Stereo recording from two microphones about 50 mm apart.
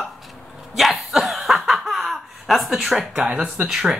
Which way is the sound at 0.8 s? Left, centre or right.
Centre.